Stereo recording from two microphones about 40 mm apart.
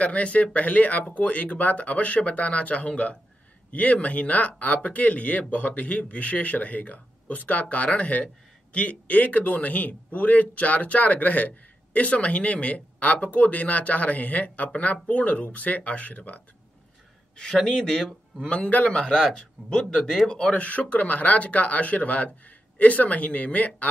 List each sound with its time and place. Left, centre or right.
0.0 s a man's voice: left
17.4 s speech: centre
20.2 s speech: left
20.5 s a man's voice: left